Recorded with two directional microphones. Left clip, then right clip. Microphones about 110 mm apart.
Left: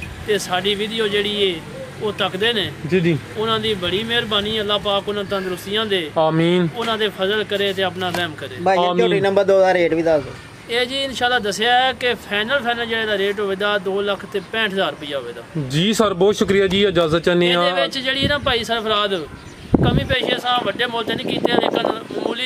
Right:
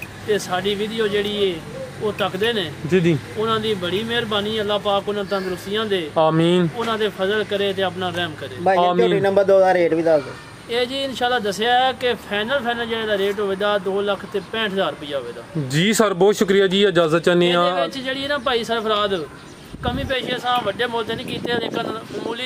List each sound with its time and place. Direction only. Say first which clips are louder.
0.3 s speech: left 2 dB; 5° left (ahead or behind)
8.6 s a man's voice: even; 30° left (ahead or behind)
10.7 s speech: left 2 dB; centre (ahead or behind)